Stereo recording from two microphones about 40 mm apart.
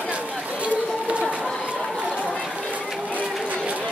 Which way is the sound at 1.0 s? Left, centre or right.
Right.